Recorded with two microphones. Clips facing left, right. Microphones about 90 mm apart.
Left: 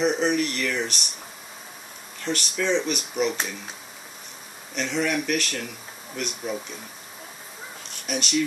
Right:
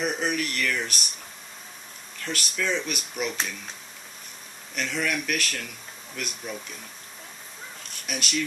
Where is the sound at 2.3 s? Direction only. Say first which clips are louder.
Left 1 dB; 5° right (ahead or behind).